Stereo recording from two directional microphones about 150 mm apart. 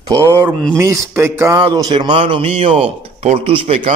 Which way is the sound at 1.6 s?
30° right (ahead or behind).